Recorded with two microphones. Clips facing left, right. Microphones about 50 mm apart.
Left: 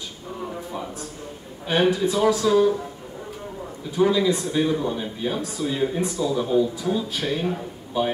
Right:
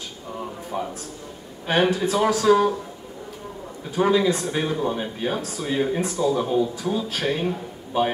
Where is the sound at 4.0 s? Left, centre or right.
Right.